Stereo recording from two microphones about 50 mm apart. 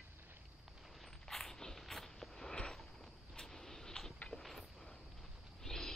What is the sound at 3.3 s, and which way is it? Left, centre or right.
Vehicle, centre.